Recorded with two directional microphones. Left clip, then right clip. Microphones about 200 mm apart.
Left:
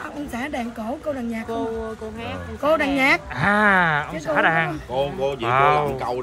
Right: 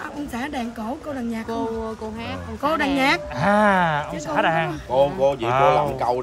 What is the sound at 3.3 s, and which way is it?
Speech, 15° right (ahead or behind).